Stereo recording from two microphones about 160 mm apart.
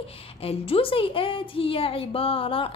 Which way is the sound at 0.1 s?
35° left (ahead or behind).